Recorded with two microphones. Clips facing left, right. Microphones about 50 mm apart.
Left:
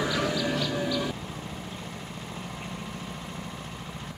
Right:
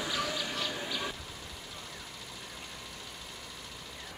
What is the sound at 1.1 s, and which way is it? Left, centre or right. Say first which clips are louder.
Vehicle: left 7 dB; left.